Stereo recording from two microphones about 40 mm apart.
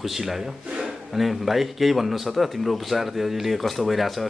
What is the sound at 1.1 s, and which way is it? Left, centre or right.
Speech, centre.